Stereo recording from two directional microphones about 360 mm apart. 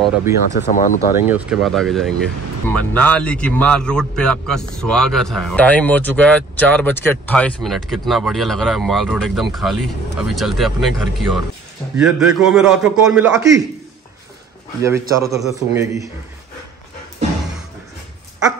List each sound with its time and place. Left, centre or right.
0.0 s speech: centre
0.6 s speech: left
1.2 s a man's voice: centre
14.8 s a man's voice: centre